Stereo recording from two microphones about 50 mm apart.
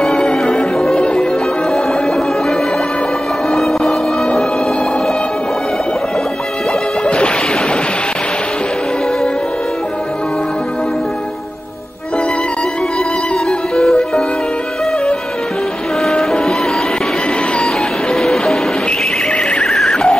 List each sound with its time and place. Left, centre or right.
0.0 s music: centre
1.7 s music: centre
7.1 s music: left
13.5 s music: centre
16.1 s music: centre
18.1 s music: centre
18.9 s neigh: left
19.7 s a sound: centre